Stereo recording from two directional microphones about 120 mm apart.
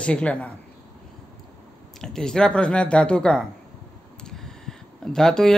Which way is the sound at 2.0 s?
5° left (ahead or behind).